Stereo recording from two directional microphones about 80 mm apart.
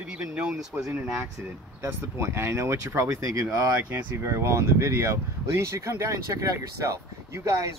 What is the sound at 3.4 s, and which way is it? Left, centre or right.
Speech, right.